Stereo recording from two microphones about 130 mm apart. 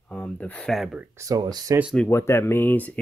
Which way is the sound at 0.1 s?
10° left (ahead or behind).